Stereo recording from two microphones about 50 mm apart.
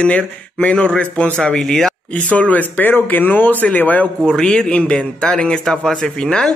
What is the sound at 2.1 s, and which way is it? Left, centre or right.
Speech, left.